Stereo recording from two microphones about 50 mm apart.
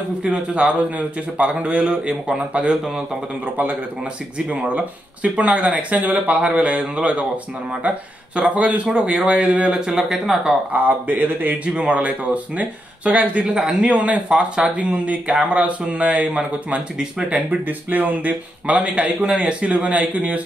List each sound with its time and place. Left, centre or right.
0.2 s a man's voice: centre
4.6 s a man's voice: right
8.4 s a man's voice: right; by 10.4 s centre
10.9 s speech: right
11.6 s a man's voice: right
13.5 s a man's voice: centre
13.9 s a man's voice: right
17.5 s speech: right
18.8 s a man's voice: centre